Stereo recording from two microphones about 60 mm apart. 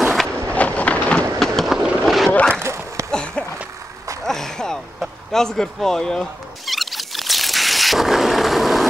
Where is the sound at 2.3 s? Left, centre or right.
Left.